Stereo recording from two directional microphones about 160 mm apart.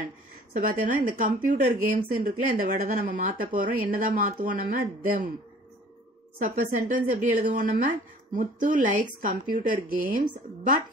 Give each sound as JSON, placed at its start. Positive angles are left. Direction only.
{"t": 0.5, "sound": "a woman's voice", "side_deg": -60}
{"t": 6.4, "sound": "a woman's voice", "side_deg": -60}
{"t": 8.4, "sound": "a woman's voice", "side_deg": -55}